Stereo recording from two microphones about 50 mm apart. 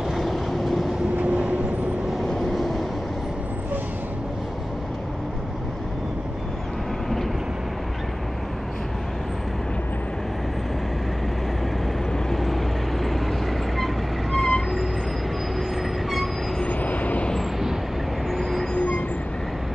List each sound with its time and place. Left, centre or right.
0.2 s vehicle: centre
1.1 s vehicle: right
2.5 s vehicle: centre
12.3 s vehicle: centre
16.6 s vehicle: left
18.4 s train: centre
18.8 s train: left